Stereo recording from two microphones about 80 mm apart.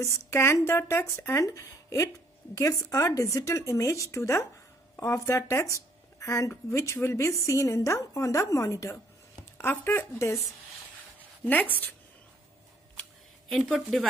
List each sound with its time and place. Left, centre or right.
0.0 s speech: left
1.4 s speech: left
9.6 s speech: left
11.4 s speech: left
13.5 s speech: centre